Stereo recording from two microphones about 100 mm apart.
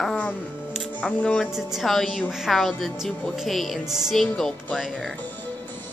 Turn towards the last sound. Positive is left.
turn(degrees=0)  # may be behind; listen again after turning